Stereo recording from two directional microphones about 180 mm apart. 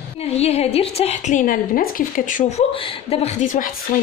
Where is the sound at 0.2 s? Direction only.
35° left (ahead or behind).